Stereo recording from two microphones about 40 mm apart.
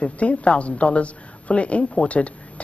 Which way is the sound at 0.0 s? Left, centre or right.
Left.